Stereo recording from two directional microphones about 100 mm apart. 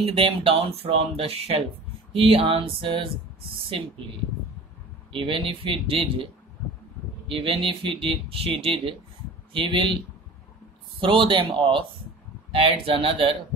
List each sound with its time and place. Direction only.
0.0 s speech: 65° right (ahead or behind); by 1.6 s 90° right
2.1 s speech: 70° right (ahead or behind)
5.1 s speech: 60° right (ahead or behind)
7.2 s speech: 65° right (ahead or behind)
9.5 s speech: 60° right (ahead or behind)
11.0 s speech: 55° right (ahead or behind)
12.5 s speech: 70° right (ahead or behind)